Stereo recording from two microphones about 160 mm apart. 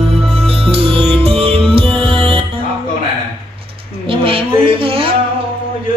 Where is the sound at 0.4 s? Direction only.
40° right (ahead or behind).